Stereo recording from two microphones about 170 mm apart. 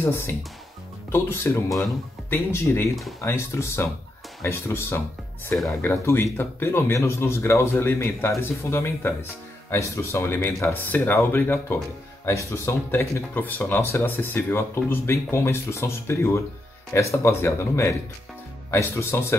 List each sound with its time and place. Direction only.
1.1 s speech: 15° left (ahead or behind)